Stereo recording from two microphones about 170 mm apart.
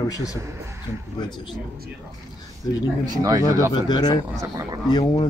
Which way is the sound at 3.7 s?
25° left (ahead or behind).